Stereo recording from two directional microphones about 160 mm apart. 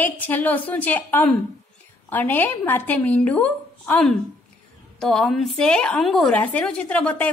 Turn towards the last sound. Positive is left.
turn(degrees=10)  # may be behind; listen again after turning